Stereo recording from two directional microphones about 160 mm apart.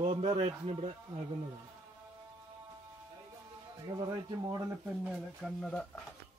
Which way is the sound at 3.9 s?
25° right (ahead or behind).